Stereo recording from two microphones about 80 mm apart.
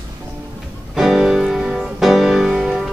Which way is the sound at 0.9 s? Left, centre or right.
Centre.